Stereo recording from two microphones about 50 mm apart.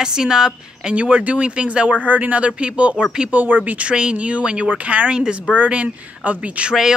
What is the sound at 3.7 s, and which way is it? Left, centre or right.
Speech, centre.